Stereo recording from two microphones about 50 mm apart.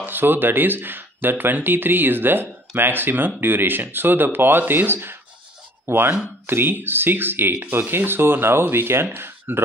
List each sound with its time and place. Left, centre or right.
0.0 s speech: right